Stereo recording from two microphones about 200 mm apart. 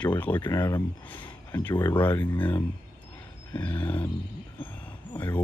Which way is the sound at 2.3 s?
5° left (ahead or behind).